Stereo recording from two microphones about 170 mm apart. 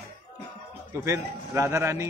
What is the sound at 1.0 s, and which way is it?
A man's voice, 15° right (ahead or behind).